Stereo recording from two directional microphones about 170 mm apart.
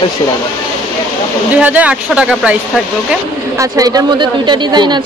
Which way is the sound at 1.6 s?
10° right (ahead or behind).